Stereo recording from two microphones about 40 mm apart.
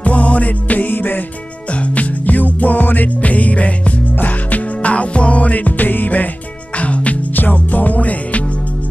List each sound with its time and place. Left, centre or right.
0.0 s music: left
1.7 s music: left
4.9 s music: left
6.8 s music: left
7.3 s music: left